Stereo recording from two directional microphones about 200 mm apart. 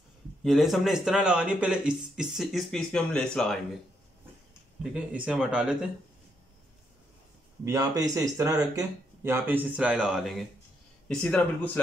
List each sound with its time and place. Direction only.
0.4 s speech: centre (ahead or behind)
4.9 s speech: 5° right (ahead or behind)
7.6 s speech: 20° right (ahead or behind); by 11.8 s 10° left (ahead or behind)